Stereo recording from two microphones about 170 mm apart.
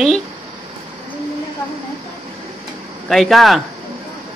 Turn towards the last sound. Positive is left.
turn(degrees=0)  # may be behind; listen again after turning